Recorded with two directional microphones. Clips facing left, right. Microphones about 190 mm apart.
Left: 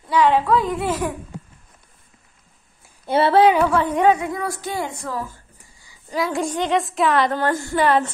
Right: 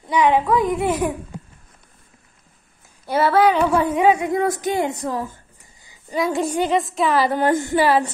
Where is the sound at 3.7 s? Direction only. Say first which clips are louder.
Right 1 dB; 10° right (ahead or behind).